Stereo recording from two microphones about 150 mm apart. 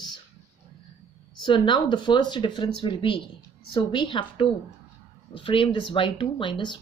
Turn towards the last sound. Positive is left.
turn(degrees=30)  # may be behind; listen again after turning